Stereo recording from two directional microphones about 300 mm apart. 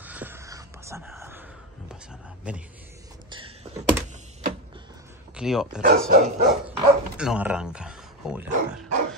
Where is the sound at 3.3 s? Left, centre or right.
Centre.